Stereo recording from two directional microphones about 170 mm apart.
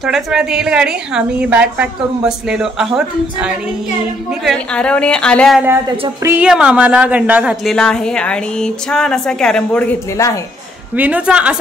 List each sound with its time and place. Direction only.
0.0 s a woman's voice: centre (ahead or behind)
4.3 s a woman's voice: 5° left (ahead or behind)
5.9 s speech: 25° right (ahead or behind)
6.3 s speech: 5° right (ahead or behind)
7.7 s a woman's voice: 5° left (ahead or behind)
10.1 s speech: 20° left (ahead or behind)
11.0 s speech: 10° right (ahead or behind)